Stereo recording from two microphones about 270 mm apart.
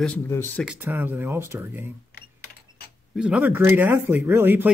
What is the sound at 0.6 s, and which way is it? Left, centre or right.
Speech, centre.